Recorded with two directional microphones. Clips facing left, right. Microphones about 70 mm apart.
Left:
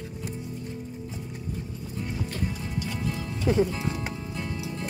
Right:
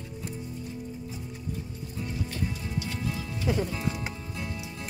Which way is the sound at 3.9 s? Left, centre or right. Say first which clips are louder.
Left 2 dB; left.